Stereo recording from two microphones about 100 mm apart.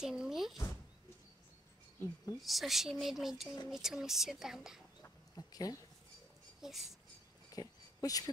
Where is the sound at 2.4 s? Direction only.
Centre (ahead or behind).